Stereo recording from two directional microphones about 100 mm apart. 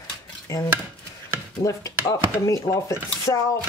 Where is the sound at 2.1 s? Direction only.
35° left (ahead or behind).